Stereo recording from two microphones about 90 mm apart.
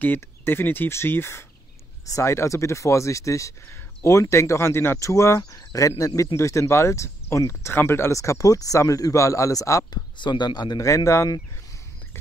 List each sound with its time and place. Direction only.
0.0 s speech: 25° left (ahead or behind)
10.1 s speech: 60° left (ahead or behind)